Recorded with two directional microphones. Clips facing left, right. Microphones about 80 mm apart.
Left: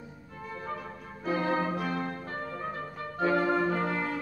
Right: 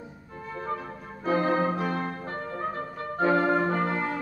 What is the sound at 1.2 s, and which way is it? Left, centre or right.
Organ, right.